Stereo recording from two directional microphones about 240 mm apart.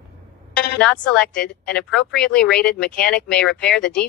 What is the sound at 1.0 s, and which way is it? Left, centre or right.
Speech, centre.